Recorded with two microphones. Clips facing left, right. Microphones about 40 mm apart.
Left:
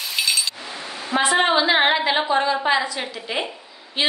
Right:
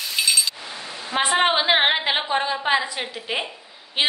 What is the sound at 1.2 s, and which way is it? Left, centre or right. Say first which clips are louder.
A woman's voice: left 1 dB; right.